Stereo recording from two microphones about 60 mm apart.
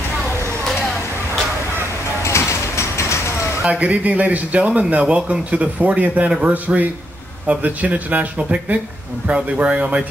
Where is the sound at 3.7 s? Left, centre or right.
Right.